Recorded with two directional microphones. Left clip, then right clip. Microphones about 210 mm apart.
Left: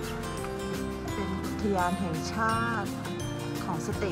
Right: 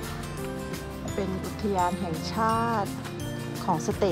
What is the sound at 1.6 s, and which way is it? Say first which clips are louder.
Speech: right 2 dB; centre (ahead or behind).